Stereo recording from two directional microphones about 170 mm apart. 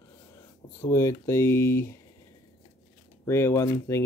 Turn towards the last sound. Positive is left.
turn(degrees=15)  # may be behind; listen again after turning